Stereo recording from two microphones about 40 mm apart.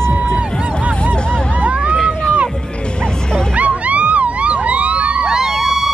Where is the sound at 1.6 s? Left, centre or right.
Right.